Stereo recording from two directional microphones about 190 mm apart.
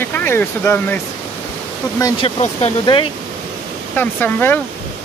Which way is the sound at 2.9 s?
25° left (ahead or behind).